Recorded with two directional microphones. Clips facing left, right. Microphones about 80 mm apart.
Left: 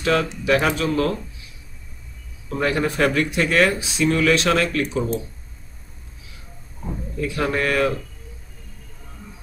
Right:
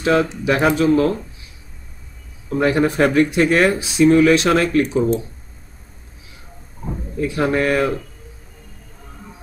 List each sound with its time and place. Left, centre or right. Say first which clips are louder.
0.0 s speech: right 4 dB; right
2.6 s speech: right 4 dB; right
7.2 s speech: right 4 dB; right